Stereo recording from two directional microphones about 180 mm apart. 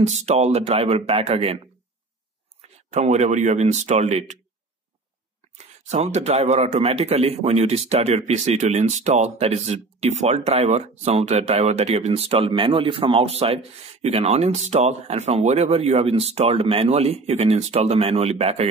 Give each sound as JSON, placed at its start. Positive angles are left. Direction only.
{"t": 0.0, "sound": "a man's voice", "side_deg": -40}
{"t": 2.9, "sound": "a man's voice", "side_deg": -40}
{"t": 5.9, "sound": "a man's voice", "side_deg": -40}